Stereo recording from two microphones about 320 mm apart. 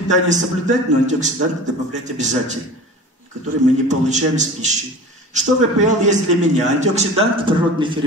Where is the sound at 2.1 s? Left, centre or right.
Right.